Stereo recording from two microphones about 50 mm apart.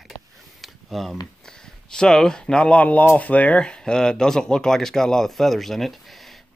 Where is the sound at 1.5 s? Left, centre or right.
Centre.